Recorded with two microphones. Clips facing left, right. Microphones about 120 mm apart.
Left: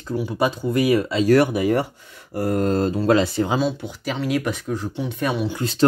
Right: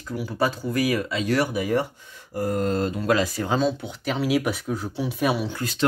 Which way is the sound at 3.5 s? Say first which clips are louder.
Left 1 dB; centre (ahead or behind).